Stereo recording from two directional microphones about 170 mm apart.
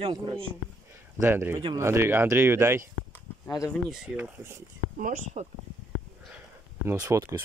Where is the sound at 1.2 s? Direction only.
10° right (ahead or behind).